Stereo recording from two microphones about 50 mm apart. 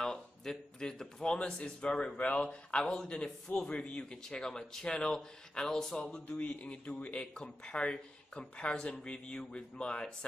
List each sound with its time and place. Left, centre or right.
0.0 s speech: centre
2.1 s speech: left
2.4 s speech: centre
6.3 s speech: left
7.3 s speech: centre